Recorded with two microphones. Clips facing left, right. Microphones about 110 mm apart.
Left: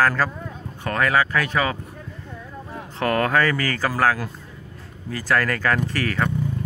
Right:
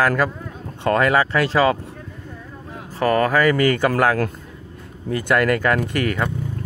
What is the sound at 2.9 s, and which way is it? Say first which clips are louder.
Speech: right 3 dB; 10° right (ahead or behind).